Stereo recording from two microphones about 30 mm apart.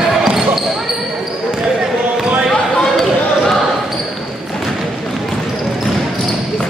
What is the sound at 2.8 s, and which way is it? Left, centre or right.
Basketball bounce, centre.